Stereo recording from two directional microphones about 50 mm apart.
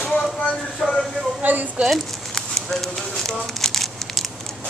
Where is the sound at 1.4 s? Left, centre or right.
Right.